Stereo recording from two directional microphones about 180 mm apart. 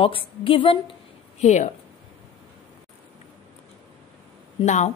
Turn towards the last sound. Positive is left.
turn(degrees=40)  # may be behind; listen again after turning